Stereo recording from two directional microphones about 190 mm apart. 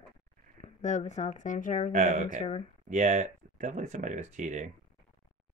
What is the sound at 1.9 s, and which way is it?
Speech, 45° right (ahead or behind).